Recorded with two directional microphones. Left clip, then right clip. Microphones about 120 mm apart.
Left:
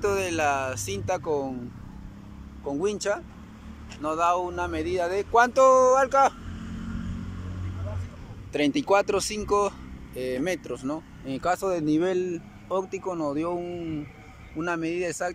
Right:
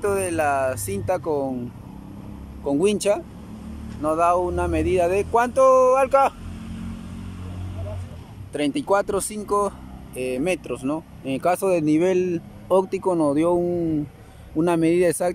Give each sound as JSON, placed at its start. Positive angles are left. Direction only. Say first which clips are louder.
{"t": 0.0, "sound": "speech", "louder": "right 3 dB", "side_deg": -5}
{"t": 2.6, "sound": "speech", "louder": "right 7 dB", "side_deg": -30}
{"t": 4.0, "sound": "speech", "louder": "right 5 dB", "side_deg": -10}
{"t": 8.5, "sound": "speech", "louder": "right 1 dB", "side_deg": -5}
{"t": 12.6, "sound": "speech", "louder": "right 9 dB", "side_deg": -35}